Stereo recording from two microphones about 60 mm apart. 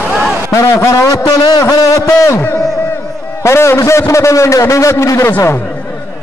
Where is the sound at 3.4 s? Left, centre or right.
Left.